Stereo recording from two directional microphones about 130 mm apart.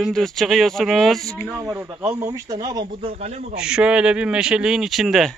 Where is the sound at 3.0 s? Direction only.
50° right (ahead or behind).